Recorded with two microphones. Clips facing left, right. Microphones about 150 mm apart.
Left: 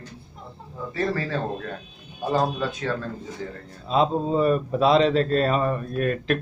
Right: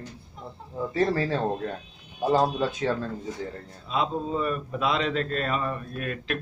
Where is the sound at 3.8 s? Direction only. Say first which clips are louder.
Left 6 dB; 35° left (ahead or behind).